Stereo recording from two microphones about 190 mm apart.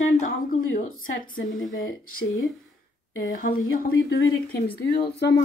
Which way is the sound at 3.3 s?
50° left (ahead or behind).